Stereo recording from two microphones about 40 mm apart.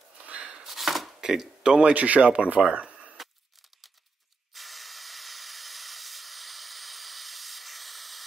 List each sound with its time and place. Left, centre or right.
0.2 s a sound: right
0.7 s chopping: centre
1.2 s speech: centre
1.6 s speech: right
3.2 s scissors: centre
4.6 s hiss: centre